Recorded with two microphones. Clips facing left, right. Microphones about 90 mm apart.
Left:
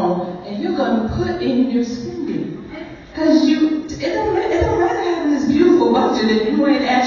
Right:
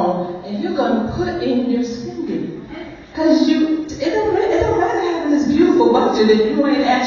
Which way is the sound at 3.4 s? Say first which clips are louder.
Even; 20° right (ahead or behind).